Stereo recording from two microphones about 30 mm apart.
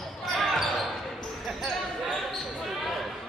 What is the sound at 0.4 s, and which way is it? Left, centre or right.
Basketball bounce, centre.